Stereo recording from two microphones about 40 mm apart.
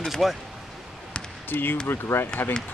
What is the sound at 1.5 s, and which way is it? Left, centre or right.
Speech, left.